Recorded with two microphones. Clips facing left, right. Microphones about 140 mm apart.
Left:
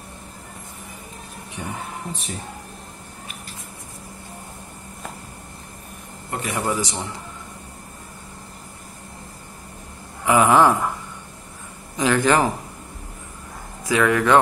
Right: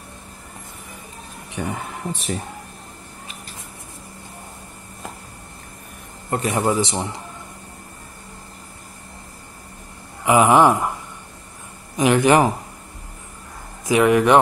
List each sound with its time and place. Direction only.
1.6 s speech: 80° right
6.3 s a man's voice: 40° right (ahead or behind)
10.2 s a man's voice: 15° right (ahead or behind)
12.0 s a man's voice: 20° right (ahead or behind)
13.8 s a man's voice: 20° right (ahead or behind)